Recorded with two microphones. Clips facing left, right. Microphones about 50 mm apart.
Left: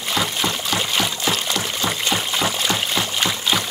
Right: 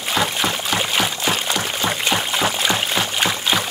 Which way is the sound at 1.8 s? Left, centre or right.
Centre.